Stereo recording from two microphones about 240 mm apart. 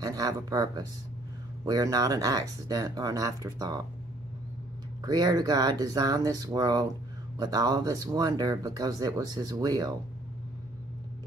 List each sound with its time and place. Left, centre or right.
0.0 s speech: centre
5.0 s speech: centre